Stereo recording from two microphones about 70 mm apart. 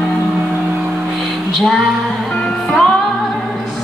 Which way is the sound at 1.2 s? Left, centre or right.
Centre.